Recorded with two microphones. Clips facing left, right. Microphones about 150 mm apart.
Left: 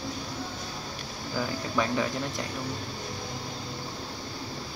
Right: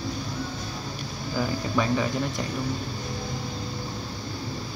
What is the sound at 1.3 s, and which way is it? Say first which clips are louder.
Speech: right 3 dB; centre (ahead or behind).